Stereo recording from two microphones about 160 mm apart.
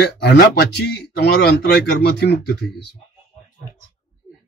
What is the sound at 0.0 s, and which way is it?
A man's voice, 90° left.